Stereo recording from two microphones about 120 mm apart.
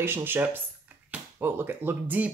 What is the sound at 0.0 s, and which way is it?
Speech, 20° right (ahead or behind).